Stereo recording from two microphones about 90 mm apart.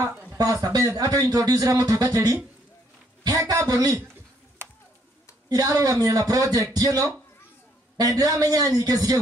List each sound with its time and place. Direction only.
0.4 s a man's voice: 40° right (ahead or behind)
4.6 s a sound: 30° right (ahead or behind)
5.5 s a man's voice: 40° right (ahead or behind)